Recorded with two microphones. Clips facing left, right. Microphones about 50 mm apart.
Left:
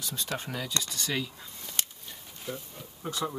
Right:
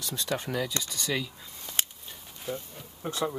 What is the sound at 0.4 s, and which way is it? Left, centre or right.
Speech, centre.